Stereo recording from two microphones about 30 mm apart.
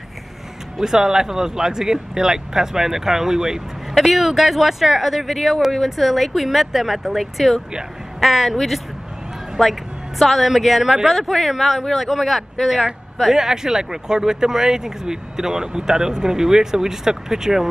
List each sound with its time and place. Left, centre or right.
0.7 s speech: centre
4.1 s a woman's voice: centre
13.3 s speech: centre